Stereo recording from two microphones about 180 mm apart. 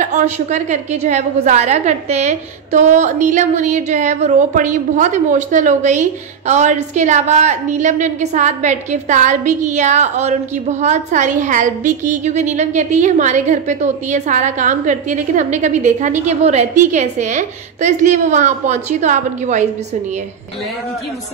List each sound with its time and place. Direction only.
0.0 s a woman's voice: 40° right (ahead or behind)